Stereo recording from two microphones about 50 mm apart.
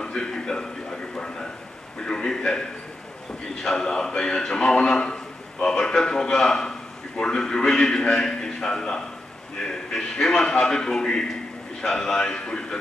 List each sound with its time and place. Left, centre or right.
0.0 s a sound: centre
2.0 s speech: centre
3.6 s speech: centre